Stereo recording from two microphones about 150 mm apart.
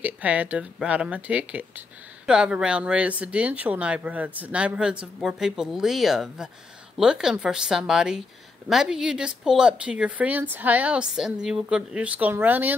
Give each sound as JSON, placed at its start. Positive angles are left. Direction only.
{"t": 0.0, "sound": "speech", "side_deg": -10}